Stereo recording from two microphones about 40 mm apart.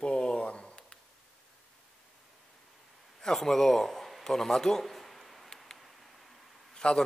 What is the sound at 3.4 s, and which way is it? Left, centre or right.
A man's voice, centre.